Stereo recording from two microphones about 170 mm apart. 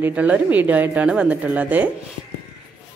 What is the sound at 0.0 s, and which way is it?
A woman's voice, 10° right (ahead or behind).